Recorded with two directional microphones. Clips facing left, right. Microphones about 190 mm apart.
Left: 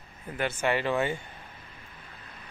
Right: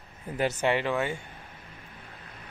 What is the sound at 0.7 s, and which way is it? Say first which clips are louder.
Speech: left 1 dB; 20° right (ahead or behind).